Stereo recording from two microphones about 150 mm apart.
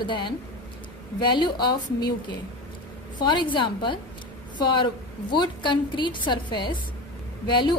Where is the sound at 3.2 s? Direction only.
30° left (ahead or behind).